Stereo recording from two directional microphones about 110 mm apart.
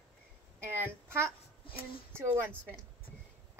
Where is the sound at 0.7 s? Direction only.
20° right (ahead or behind).